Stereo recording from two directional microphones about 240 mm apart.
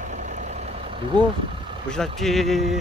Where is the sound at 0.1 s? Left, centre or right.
Right.